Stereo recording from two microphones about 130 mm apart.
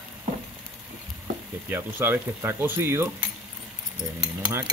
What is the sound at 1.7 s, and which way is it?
Speech, 15° right (ahead or behind).